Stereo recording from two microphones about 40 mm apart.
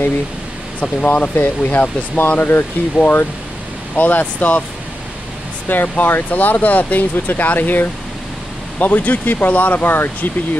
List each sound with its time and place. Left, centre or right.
0.7 s speech: left
3.9 s speech: left
5.7 s speech: left
9.8 s speech: left